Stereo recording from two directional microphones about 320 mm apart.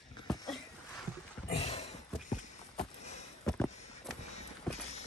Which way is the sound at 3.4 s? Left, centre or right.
Centre.